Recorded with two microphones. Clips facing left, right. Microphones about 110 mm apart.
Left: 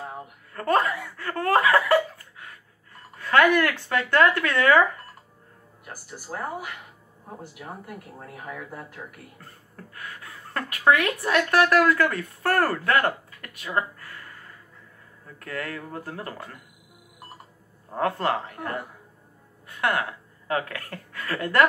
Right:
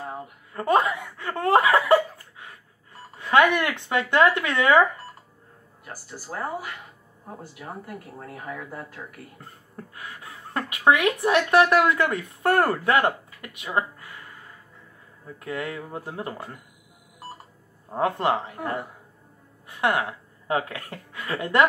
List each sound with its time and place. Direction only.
0.6 s speech: 10° right (ahead or behind)
1.0 s a sound: 25° right (ahead or behind)
3.7 s speech: 20° right (ahead or behind)
6.3 s speech: 30° right (ahead or behind)
9.9 s speech: 20° right (ahead or behind)
15.3 s speech: 15° right (ahead or behind)
17.9 s speech: 20° right (ahead or behind)
19.8 s a woman's voice: 25° right (ahead or behind)